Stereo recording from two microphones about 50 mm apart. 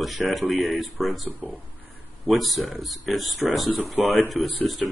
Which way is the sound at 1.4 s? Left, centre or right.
Right.